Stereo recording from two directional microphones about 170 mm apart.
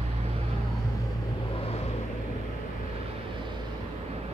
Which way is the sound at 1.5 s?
35° left (ahead or behind).